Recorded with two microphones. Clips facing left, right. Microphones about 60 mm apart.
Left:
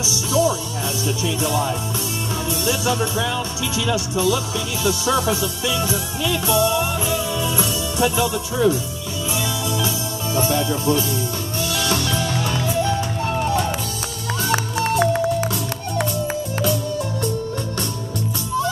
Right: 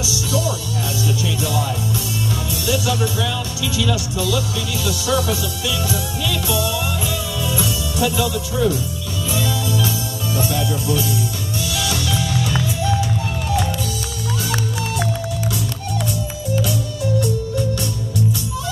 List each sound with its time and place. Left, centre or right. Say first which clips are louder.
0.0 s music: left 3 dB; left
1.0 s speech: left 1 dB; left
4.8 s music: left 1 dB; left
14.5 s music: left 3 dB; left